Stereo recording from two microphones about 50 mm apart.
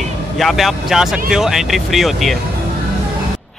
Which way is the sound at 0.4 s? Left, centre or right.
Centre.